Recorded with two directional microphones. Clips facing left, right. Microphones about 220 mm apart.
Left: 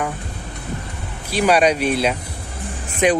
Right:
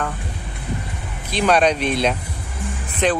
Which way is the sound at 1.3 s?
10° left (ahead or behind).